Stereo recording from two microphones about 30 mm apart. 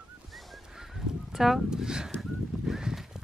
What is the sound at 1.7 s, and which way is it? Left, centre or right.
Speech, right.